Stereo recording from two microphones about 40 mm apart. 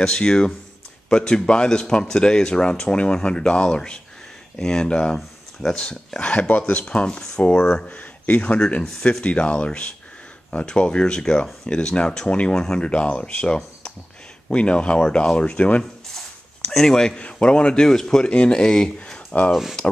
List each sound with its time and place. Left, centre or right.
0.0 s speech: centre
6.2 s speech: left
7.2 s speech: centre
7.9 s speech: left
16.7 s speech: centre
17.2 s speech: left
17.8 s speech: centre
18.2 s speech: left
19.1 s a sound: left